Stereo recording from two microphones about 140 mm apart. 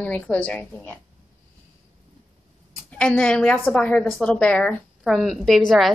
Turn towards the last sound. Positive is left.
turn(degrees=5)  # may be behind; listen again after turning